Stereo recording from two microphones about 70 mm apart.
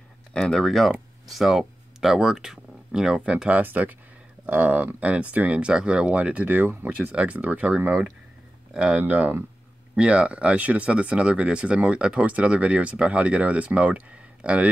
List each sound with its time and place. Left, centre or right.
0.3 s speech: centre
3.3 s speech: centre
7.0 s speech: centre